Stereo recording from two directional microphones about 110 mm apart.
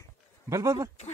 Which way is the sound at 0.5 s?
30° right (ahead or behind).